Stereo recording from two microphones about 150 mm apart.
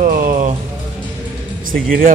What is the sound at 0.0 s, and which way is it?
Music, 65° right (ahead or behind).